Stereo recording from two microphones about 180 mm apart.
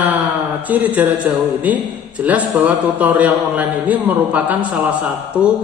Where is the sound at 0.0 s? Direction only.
10° right (ahead or behind).